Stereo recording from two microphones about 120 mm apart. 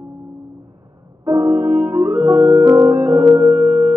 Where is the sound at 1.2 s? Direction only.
20° right (ahead or behind).